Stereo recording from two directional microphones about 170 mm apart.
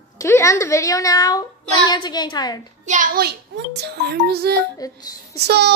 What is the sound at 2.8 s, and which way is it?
Speech, 50° right (ahead or behind).